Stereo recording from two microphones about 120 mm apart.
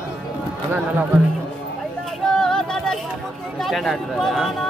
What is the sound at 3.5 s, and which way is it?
Speech, centre (ahead or behind).